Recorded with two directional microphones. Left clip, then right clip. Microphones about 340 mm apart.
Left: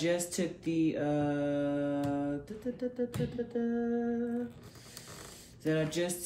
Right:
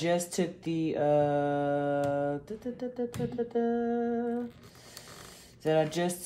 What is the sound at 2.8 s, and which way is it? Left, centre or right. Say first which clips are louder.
Humming: right 1 dB; centre.